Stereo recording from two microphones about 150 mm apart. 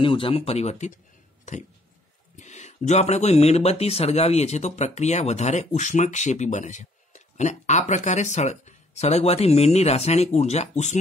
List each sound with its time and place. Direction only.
0.0 s speech: 35° left (ahead or behind)
2.3 s speech: 50° left (ahead or behind)